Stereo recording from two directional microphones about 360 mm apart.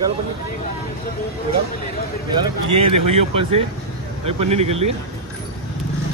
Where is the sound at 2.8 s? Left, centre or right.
Centre.